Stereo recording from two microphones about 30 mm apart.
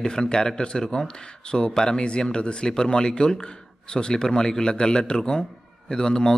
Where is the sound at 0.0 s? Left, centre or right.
Left.